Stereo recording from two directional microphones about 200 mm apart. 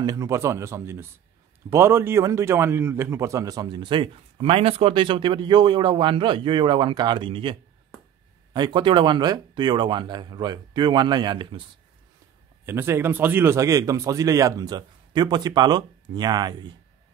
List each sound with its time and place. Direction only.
0.0 s a man's voice: 15° right (ahead or behind)
8.5 s a man's voice: 20° right (ahead or behind)
12.6 s speech: 10° right (ahead or behind)